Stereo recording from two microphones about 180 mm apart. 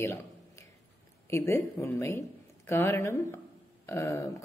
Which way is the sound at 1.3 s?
15° left (ahead or behind).